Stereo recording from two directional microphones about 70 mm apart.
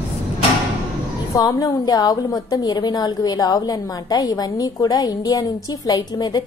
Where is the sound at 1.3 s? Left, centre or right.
Left.